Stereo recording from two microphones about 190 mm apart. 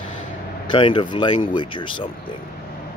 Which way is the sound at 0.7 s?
25° left (ahead or behind).